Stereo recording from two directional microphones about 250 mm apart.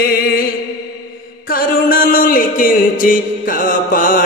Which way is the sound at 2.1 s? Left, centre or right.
Left.